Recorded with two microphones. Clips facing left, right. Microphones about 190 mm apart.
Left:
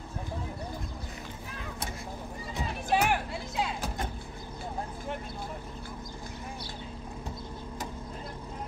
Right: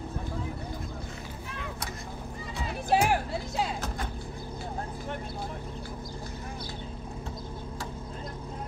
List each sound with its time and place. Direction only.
2.9 s music: 35° right (ahead or behind)